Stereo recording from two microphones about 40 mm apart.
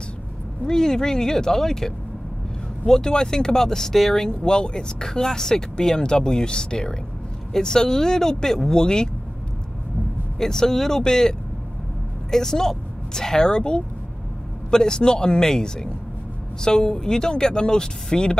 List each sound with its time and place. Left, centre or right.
0.7 s speech: centre
2.9 s speech: centre
4.3 s speech: centre
10.4 s speech: centre